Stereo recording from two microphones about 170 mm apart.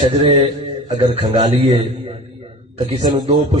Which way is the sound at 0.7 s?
20° right (ahead or behind).